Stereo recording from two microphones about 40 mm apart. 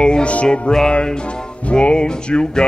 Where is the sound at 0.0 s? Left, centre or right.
Left.